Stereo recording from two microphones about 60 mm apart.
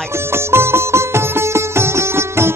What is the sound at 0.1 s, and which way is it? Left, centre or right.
Music, right.